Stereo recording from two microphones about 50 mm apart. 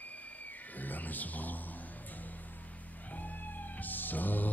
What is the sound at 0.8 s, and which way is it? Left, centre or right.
Music, left.